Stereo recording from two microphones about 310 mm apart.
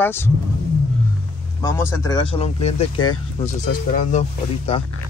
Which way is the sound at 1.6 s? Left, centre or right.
Centre.